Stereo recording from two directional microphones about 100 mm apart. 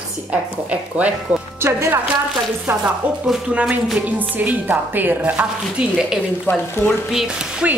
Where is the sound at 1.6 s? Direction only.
25° right (ahead or behind).